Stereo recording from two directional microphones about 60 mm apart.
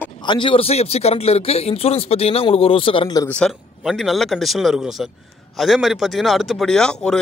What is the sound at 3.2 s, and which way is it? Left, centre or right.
Speech, left.